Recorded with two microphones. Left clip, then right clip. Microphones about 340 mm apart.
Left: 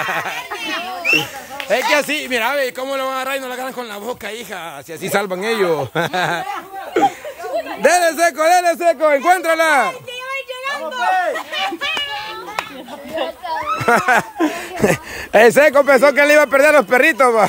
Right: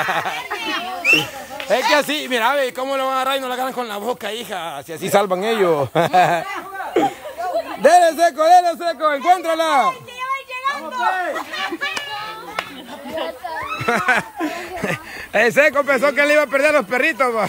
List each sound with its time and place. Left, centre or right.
0.0 s speech: centre
6.9 s laughter: centre
7.8 s speech: centre
11.3 s a sound: left
13.1 s a sound: left
13.7 s speech: centre